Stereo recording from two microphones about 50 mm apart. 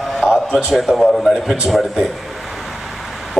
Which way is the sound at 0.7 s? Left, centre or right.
Centre.